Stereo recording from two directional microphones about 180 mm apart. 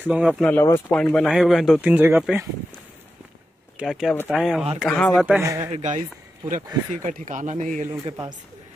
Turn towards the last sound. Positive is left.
turn(degrees=-45)  # may be behind; listen again after turning